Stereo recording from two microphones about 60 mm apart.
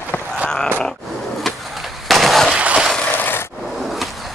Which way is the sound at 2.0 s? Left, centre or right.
Centre.